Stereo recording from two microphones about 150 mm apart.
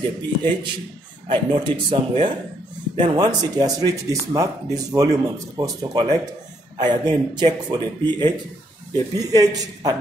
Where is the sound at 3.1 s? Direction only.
25° right (ahead or behind).